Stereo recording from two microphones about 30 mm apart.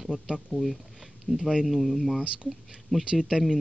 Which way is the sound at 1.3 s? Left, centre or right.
Left.